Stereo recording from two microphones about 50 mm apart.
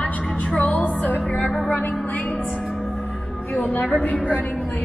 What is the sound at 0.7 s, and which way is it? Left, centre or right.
Music, left.